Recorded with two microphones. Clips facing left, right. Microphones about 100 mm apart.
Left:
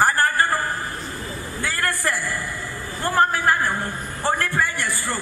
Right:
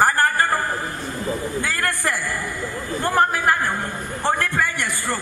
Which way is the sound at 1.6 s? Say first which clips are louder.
Right 1 dB; 20° right (ahead or behind).